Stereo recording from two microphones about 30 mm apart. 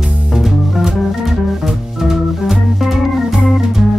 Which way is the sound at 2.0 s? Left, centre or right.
Centre.